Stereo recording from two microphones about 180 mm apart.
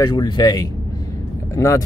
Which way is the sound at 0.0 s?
20° left (ahead or behind).